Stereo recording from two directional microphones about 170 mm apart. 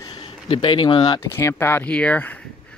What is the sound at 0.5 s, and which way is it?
Speech, 25° left (ahead or behind).